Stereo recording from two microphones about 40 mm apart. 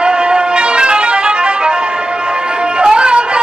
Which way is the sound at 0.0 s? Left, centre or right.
Right.